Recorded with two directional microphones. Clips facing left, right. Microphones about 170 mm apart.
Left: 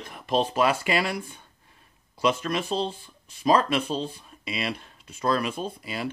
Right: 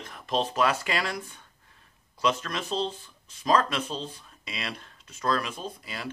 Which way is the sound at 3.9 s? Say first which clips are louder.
Left 6 dB; 15° left (ahead or behind).